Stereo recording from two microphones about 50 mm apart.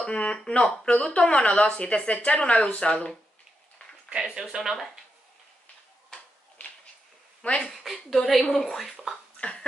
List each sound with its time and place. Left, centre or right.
0.0 s speech: left
4.2 s speech: centre
7.7 s a woman's voice: centre
9.4 s cough: left